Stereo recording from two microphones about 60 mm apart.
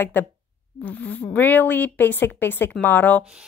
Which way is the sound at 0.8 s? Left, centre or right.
Left.